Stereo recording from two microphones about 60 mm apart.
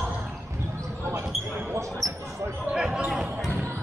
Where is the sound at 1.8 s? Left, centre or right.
Right.